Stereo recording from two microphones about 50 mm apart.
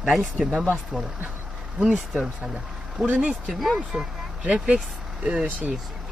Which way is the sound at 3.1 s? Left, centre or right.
Right.